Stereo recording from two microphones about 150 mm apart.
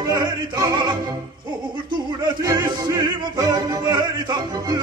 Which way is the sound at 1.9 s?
25° right (ahead or behind).